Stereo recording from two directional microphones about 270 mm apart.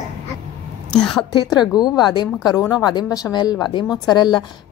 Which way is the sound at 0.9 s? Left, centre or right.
Centre.